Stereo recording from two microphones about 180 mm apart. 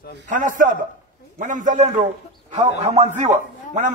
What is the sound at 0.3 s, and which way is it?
A man's voice, 45° right (ahead or behind).